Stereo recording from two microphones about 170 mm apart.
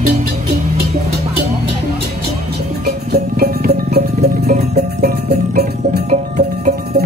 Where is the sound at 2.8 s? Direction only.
65° right (ahead or behind).